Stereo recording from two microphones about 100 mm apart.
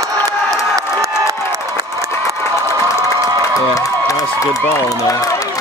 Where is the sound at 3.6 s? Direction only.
35° left (ahead or behind).